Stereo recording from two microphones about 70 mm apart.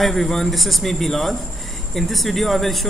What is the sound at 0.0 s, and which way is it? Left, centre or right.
Speech, centre.